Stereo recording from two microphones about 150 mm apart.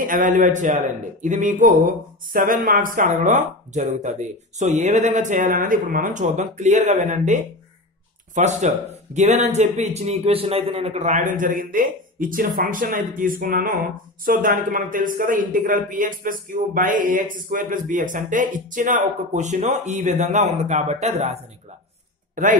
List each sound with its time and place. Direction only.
0.0 s a man's voice: 65° right (ahead or behind); by 21.4 s 45° right (ahead or behind)
22.3 s a man's voice: 60° right (ahead or behind)